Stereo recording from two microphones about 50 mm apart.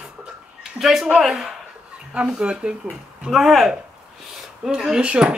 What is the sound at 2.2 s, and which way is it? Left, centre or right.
Speech, right.